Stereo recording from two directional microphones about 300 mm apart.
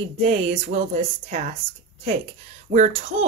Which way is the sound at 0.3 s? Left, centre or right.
Right.